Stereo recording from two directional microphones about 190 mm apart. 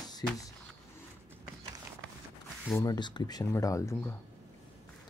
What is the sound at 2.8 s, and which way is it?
Speech, 20° left (ahead or behind).